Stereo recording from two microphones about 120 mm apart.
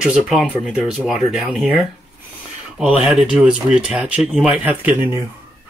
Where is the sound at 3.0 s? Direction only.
5° right (ahead or behind).